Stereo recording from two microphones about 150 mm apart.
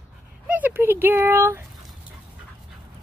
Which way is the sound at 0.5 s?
10° right (ahead or behind).